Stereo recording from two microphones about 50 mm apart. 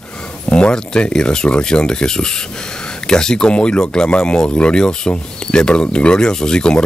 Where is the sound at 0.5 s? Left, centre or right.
Left.